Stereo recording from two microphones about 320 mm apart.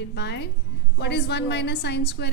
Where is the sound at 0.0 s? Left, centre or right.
Left.